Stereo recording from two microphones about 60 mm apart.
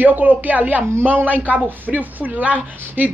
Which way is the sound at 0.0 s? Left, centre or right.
Right.